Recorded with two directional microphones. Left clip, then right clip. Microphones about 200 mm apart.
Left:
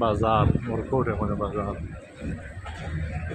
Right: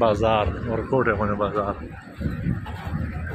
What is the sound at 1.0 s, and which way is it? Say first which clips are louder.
Speech: right 6 dB; 10° right (ahead or behind).